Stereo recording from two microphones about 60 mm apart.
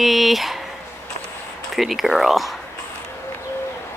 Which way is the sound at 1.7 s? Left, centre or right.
Centre.